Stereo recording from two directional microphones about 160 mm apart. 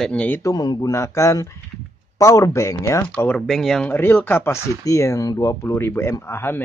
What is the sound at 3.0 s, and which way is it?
Speech, 10° left (ahead or behind).